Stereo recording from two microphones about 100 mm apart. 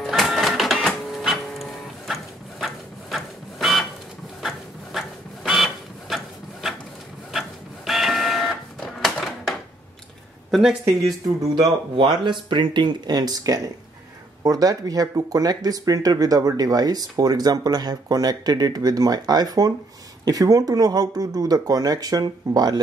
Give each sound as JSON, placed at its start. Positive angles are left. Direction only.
{"t": 0.0, "sound": "printer", "side_deg": 0}
{"t": 8.7, "sound": "a sound", "side_deg": 0}
{"t": 10.5, "sound": "speech", "side_deg": -5}
{"t": 11.5, "sound": "speech", "side_deg": -45}